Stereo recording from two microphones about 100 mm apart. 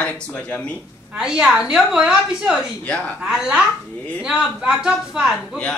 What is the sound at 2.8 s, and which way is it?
Speech, 15° left (ahead or behind).